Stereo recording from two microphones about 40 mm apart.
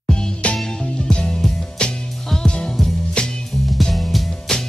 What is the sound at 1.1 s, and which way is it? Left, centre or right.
Music, left.